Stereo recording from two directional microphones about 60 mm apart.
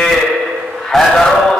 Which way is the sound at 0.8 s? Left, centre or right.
Centre.